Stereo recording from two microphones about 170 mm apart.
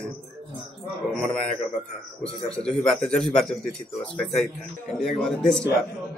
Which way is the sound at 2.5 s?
5° left (ahead or behind).